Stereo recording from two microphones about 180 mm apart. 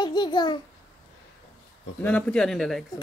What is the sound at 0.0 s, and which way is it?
Babbling, 25° left (ahead or behind).